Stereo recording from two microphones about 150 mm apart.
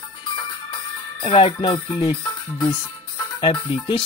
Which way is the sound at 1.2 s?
35° left (ahead or behind).